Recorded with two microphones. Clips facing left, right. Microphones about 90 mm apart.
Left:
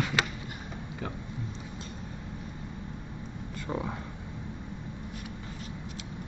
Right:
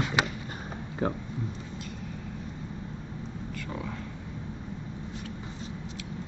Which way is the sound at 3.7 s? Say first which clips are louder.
Left 5 dB; 25° left (ahead or behind).